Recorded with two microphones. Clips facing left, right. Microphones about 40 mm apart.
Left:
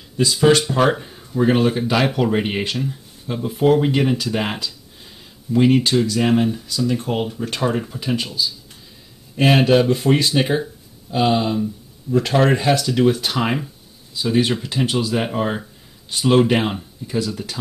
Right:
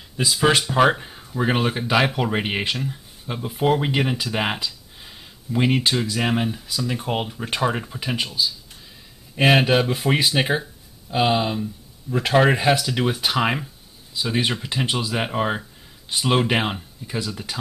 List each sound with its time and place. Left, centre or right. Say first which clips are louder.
0.2 s speech: left 4 dB; centre
7.9 s speech: left 3 dB; centre